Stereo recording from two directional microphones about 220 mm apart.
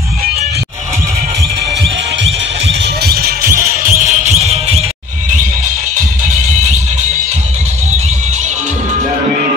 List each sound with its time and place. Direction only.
2.2 s music: 55° right (ahead or behind); by 4.8 s 30° right (ahead or behind)